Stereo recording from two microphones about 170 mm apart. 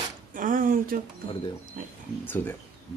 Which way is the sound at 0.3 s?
55° right (ahead or behind).